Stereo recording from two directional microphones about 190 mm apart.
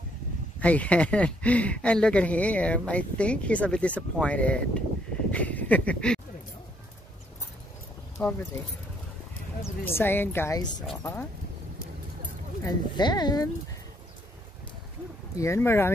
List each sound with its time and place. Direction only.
0.6 s speech: 5° left (ahead or behind)
8.2 s speech: 5° left (ahead or behind)
9.6 s speech: 10° left (ahead or behind)
12.6 s speech: 20° left (ahead or behind)
15.3 s speech: 15° left (ahead or behind)